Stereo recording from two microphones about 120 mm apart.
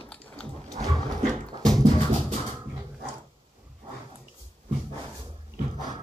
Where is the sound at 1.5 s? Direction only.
35° right (ahead or behind).